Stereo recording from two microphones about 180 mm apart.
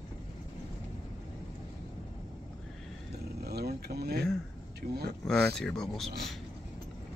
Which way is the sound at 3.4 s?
60° right (ahead or behind).